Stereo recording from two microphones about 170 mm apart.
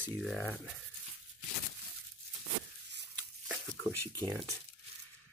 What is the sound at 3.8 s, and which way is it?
Speech, 20° right (ahead or behind).